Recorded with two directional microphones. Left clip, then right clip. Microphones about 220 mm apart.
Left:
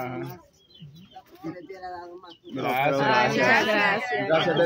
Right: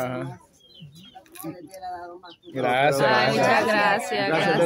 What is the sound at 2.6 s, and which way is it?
Bird, 50° right (ahead or behind).